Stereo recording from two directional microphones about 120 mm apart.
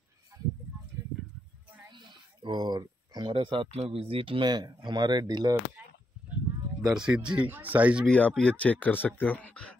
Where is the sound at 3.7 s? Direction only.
55° right (ahead or behind); by 5.5 s 35° right (ahead or behind).